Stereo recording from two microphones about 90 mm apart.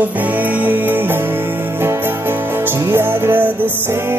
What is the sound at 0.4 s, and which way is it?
Music, 20° right (ahead or behind).